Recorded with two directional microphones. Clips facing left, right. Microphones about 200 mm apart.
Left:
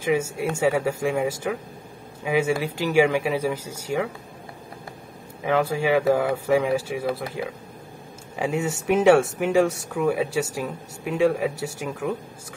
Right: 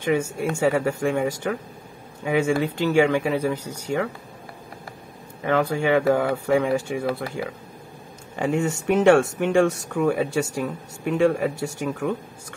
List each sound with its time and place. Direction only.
0.0 s speech: 5° left (ahead or behind)
5.4 s speech: 5° left (ahead or behind)